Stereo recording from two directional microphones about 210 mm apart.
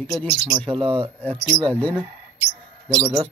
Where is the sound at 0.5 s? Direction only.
25° right (ahead or behind).